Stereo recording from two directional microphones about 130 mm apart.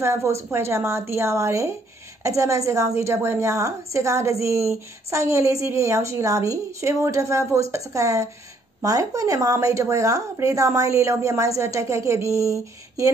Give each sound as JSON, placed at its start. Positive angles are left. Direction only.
{"t": 0.0, "sound": "a woman's voice", "side_deg": -20}